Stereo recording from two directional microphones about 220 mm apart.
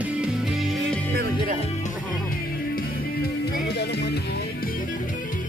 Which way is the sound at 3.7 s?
50° left (ahead or behind).